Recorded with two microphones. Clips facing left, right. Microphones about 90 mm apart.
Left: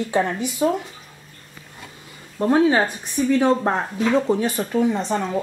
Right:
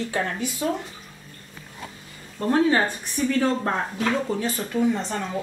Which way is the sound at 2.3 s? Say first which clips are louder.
Left 3 dB; 20° left (ahead or behind).